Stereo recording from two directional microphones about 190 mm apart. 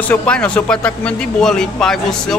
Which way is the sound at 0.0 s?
5° left (ahead or behind).